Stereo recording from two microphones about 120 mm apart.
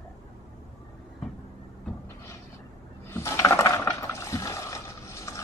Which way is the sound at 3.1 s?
25° left (ahead or behind).